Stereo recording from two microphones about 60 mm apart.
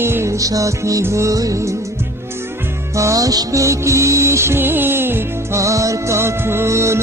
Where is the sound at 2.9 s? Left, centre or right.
Right.